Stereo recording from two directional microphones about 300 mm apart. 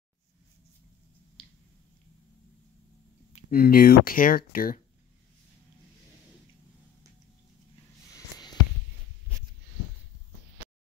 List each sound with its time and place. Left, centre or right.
1.4 s squish: centre
3.3 s speech: left
8.1 s a sound: centre